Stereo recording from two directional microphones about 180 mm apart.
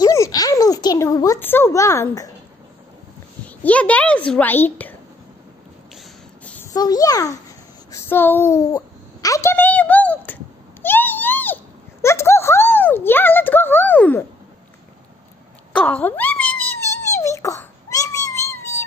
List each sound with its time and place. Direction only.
0.0 s a child's voice: 20° left (ahead or behind)
3.4 s a child's voice: 10° left (ahead or behind)
6.4 s a sound: 10° left (ahead or behind)
6.7 s a child's voice: 20° left (ahead or behind)
7.9 s a sound: 10° left (ahead or behind)
15.7 s wail: 10° left (ahead or behind)